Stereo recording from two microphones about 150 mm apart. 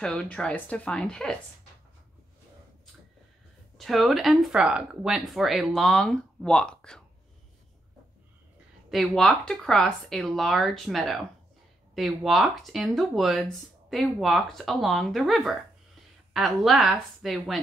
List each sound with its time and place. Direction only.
0.0 s a woman's voice: 5° left (ahead or behind)
3.7 s speech: centre (ahead or behind)
8.9 s speech: centre (ahead or behind)